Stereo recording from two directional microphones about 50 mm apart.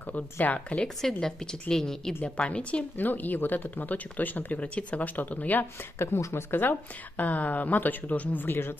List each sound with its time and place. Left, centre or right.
0.0 s a woman's voice: left
1.2 s a woman's voice: centre
2.2 s a woman's voice: left
3.0 s a woman's voice: left
5.9 s a woman's voice: left